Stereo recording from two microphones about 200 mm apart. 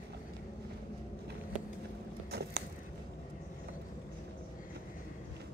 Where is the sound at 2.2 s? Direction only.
55° right (ahead or behind).